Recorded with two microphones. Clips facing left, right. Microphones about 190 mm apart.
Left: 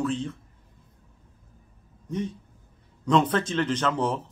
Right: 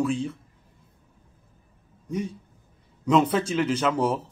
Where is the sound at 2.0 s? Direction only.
10° right (ahead or behind).